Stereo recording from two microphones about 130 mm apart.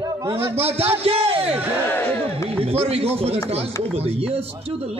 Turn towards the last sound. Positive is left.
turn(degrees=-50)  # may be behind; listen again after turning